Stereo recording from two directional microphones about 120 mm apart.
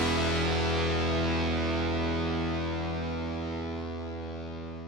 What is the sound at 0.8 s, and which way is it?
Music, centre (ahead or behind).